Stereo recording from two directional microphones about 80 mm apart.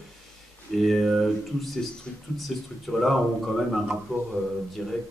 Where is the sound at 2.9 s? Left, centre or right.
Centre.